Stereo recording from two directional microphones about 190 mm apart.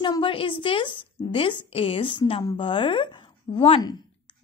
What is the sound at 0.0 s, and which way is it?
A woman's voice, 25° left (ahead or behind).